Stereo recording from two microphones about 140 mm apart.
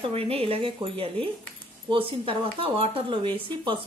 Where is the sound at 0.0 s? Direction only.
40° right (ahead or behind).